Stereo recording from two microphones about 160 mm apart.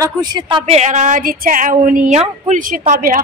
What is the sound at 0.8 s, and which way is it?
A woman's voice, 50° right (ahead or behind).